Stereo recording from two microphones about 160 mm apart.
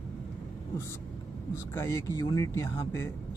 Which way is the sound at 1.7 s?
15° left (ahead or behind).